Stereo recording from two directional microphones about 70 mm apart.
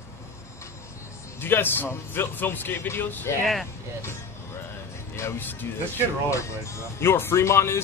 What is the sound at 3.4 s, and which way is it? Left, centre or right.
Speech, centre.